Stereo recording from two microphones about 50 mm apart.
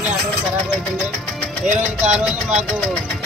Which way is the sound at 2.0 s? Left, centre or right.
Centre.